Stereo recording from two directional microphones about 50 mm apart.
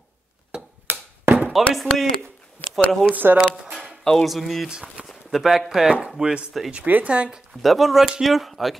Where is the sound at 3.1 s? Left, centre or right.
Right.